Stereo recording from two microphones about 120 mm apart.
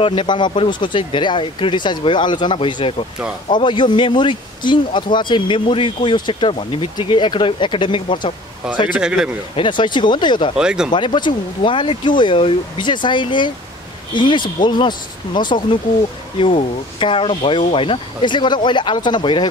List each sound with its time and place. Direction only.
0.0 s speech: 45° left (ahead or behind)
8.9 s speech: 5° right (ahead or behind)
9.6 s speech: 40° left (ahead or behind)
10.6 s speech: 5° right (ahead or behind)
10.9 s speech: 40° left (ahead or behind)